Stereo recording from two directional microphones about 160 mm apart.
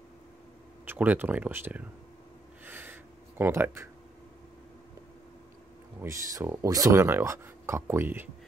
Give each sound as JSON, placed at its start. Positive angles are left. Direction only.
{"t": 0.8, "sound": "speech", "side_deg": -10}
{"t": 2.6, "sound": "a sound", "side_deg": -15}
{"t": 5.9, "sound": "speech", "side_deg": -15}